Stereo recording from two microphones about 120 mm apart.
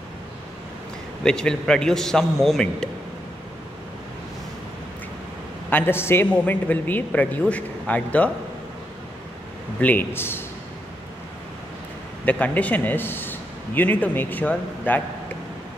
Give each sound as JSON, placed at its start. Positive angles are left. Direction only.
{"t": 1.2, "sound": "a man's voice", "side_deg": 5}
{"t": 5.7, "sound": "a man's voice", "side_deg": 20}
{"t": 9.8, "sound": "a man's voice", "side_deg": 15}
{"t": 12.3, "sound": "a man's voice", "side_deg": 10}